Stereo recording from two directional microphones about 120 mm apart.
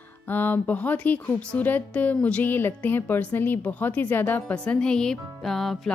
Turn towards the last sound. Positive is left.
turn(degrees=0)  # may be behind; listen again after turning